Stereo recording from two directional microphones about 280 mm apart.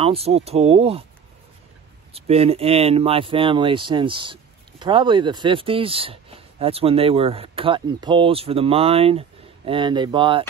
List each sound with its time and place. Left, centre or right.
0.0 s speech: right
2.1 s speech: right